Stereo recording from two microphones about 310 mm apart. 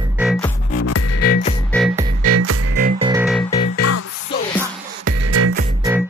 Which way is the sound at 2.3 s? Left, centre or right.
Right.